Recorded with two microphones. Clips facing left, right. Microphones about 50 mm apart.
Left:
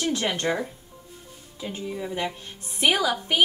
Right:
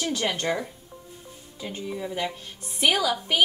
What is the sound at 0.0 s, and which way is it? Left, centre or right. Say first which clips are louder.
Speech: left 1 dB; centre.